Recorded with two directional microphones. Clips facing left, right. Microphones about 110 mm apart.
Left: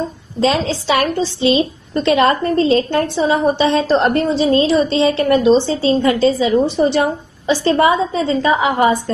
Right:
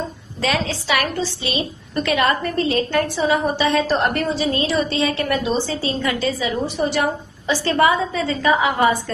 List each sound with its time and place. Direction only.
0.4 s a woman's voice: 25° left (ahead or behind)